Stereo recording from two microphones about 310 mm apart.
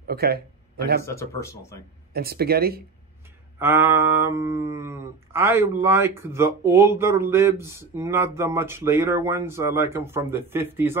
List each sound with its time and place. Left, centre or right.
0.0 s speech: right
1.0 s speech: centre
2.1 s speech: right
3.5 s a sound: centre